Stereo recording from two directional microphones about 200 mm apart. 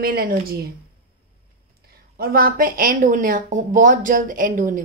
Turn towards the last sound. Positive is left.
turn(degrees=-40)  # may be behind; listen again after turning